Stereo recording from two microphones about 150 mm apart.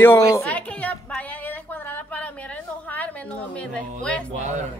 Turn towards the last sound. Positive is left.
turn(degrees=-50)  # may be behind; listen again after turning